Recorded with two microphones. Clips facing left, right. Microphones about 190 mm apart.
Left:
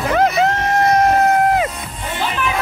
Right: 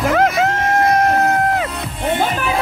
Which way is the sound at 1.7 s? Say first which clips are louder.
Right 7 dB; 60° right (ahead or behind).